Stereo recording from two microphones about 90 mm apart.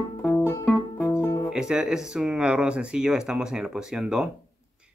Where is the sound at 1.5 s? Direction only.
10° right (ahead or behind).